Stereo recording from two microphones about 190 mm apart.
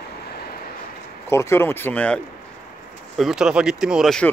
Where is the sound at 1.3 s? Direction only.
15° left (ahead or behind).